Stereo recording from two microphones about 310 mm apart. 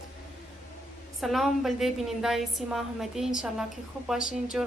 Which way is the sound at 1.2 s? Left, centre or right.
Centre.